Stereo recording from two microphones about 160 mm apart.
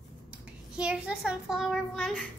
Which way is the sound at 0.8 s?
5° right (ahead or behind).